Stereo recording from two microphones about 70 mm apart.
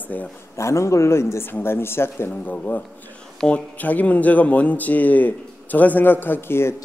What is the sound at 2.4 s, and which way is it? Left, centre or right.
Speech, left.